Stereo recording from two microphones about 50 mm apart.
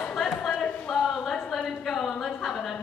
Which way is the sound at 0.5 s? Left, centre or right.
Left.